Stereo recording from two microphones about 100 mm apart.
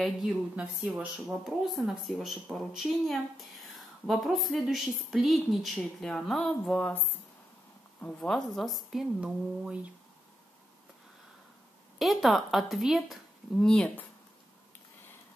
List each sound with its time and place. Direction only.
0.0 s speech: centre (ahead or behind)
8.0 s speech: 5° left (ahead or behind)
9.2 s speech: 10° right (ahead or behind)
12.0 s speech: centre (ahead or behind)
13.6 s speech: 10° left (ahead or behind)